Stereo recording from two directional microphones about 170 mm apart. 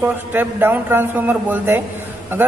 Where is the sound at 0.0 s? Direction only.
10° right (ahead or behind).